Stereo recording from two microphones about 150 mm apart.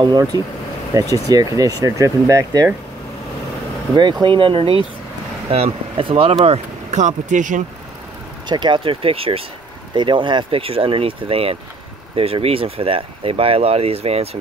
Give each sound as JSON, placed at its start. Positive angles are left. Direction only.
{"t": 0.0, "sound": "speech", "side_deg": -25}
{"t": 3.9, "sound": "speech", "side_deg": -30}
{"t": 6.4, "sound": "speech", "side_deg": -45}
{"t": 8.5, "sound": "speech", "side_deg": -30}